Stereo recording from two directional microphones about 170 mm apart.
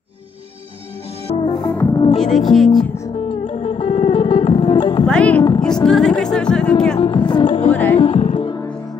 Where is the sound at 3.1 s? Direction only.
35° left (ahead or behind).